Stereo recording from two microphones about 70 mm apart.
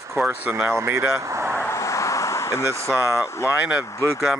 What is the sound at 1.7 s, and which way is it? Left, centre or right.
Vehicle, left.